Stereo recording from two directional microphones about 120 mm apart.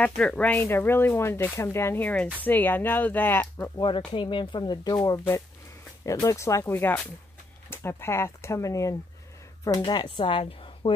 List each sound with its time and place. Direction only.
0.0 s speech: 10° left (ahead or behind)
3.7 s speech: 40° left (ahead or behind)
4.9 s speech: 25° left (ahead or behind)
9.8 s speech: 40° left (ahead or behind)